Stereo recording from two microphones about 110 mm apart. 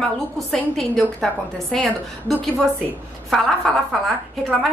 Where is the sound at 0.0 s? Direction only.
5° left (ahead or behind).